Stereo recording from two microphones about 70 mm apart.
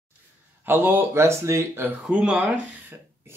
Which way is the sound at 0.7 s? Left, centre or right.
Right.